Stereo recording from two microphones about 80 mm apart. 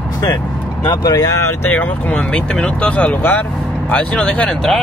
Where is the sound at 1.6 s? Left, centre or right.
Centre.